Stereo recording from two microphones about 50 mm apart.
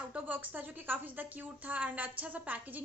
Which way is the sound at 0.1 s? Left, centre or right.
Right.